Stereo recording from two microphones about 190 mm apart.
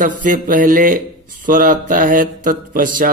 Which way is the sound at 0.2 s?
45° right (ahead or behind).